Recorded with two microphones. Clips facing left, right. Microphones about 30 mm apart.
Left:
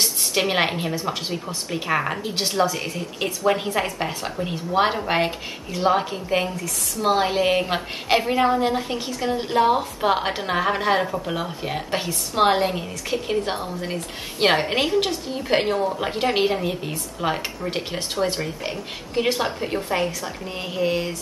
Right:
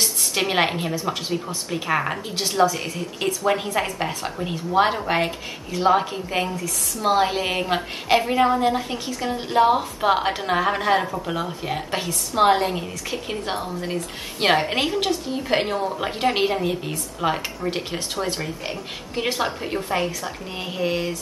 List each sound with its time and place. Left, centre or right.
0.0 s a woman's voice: centre
18.4 s speech: centre